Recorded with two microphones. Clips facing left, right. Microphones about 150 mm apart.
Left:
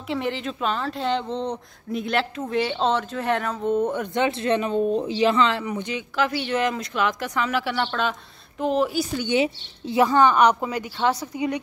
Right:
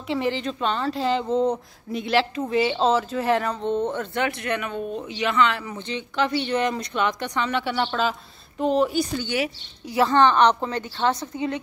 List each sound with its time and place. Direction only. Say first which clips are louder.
0.1 s a woman's voice: right 2 dB; centre (ahead or behind); by 5.7 s 30° left (ahead or behind)
5.7 s a woman's voice: left 3 dB; 10° left (ahead or behind)
9.2 s speech: left 4 dB; 25° left (ahead or behind)
10.0 s a woman's voice: even; 10° left (ahead or behind)